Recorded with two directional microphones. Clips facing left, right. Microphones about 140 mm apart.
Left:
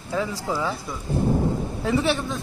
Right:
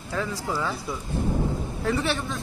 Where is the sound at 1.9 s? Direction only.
20° left (ahead or behind).